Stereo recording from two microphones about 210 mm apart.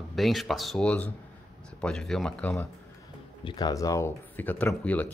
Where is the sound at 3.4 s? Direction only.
20° left (ahead or behind).